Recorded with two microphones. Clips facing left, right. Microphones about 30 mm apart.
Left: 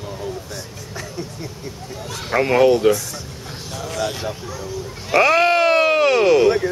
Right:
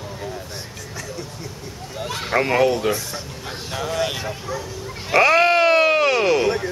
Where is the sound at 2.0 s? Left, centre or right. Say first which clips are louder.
Right 5 dB; right.